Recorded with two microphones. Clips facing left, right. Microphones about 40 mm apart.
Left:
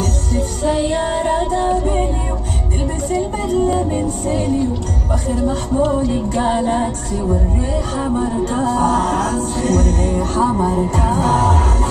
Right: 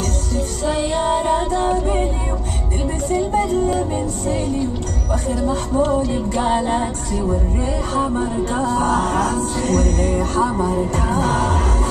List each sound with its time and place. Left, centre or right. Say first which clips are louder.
5.3 s speech: left 2 dB; left
8.7 s music: left 2 dB; right
9.6 s music: left 2 dB; left